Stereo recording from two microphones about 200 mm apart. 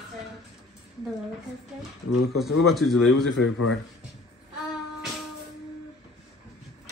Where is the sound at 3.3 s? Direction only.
75° left (ahead or behind).